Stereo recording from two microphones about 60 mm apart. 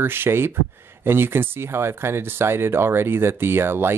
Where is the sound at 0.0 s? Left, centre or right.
Right.